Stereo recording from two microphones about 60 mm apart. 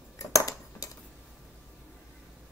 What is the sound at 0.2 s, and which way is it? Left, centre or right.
Cutlery, left.